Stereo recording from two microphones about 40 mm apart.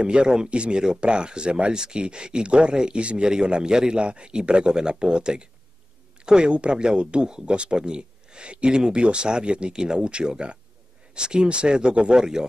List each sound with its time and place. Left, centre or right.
0.0 s a man's voice: right